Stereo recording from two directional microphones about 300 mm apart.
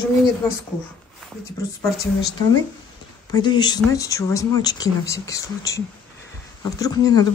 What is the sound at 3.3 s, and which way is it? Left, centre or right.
Speech, centre.